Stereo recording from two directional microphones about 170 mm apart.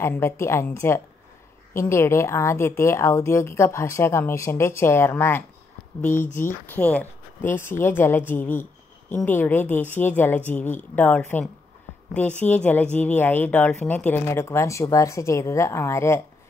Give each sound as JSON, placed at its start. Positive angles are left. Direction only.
{"t": 0.0, "sound": "speech", "side_deg": 15}